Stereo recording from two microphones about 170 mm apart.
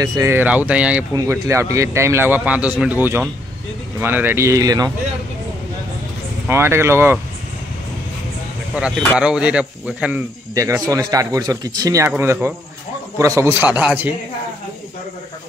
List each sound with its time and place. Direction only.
0.0 s a man's voice: 15° right (ahead or behind)
1.1 s a man's voice: 20° right (ahead or behind)
6.4 s a man's voice: 15° right (ahead or behind)
8.7 s a man's voice: 5° right (ahead or behind)
10.5 s a man's voice: 20° right (ahead or behind)